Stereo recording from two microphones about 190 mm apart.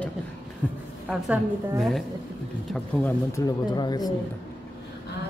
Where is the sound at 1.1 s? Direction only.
5° right (ahead or behind).